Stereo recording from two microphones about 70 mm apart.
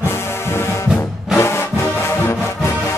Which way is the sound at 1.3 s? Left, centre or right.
Left.